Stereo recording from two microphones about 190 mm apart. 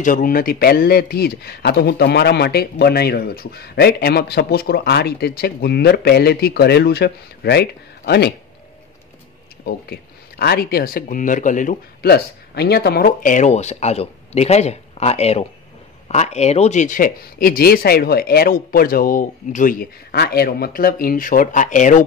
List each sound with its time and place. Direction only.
0.0 s speech: 45° left (ahead or behind)
9.7 s speech: 55° left (ahead or behind); by 22.0 s 40° left (ahead or behind)